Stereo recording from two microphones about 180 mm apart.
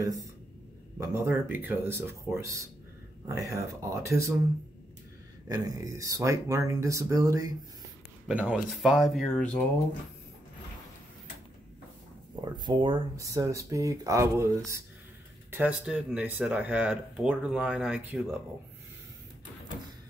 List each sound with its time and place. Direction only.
0.9 s speech: 15° right (ahead or behind)
5.5 s speech: 20° right (ahead or behind)
8.3 s speech: 5° right (ahead or behind)
12.5 s speech: 25° right (ahead or behind); by 18.3 s 5° right (ahead or behind)